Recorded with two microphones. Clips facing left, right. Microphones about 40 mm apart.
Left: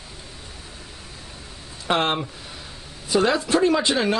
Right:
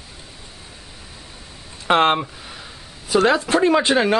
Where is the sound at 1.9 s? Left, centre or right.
Right.